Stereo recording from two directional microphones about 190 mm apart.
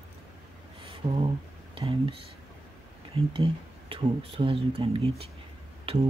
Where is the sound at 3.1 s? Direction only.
30° right (ahead or behind).